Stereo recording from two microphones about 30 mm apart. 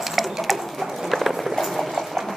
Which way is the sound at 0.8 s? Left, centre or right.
Centre.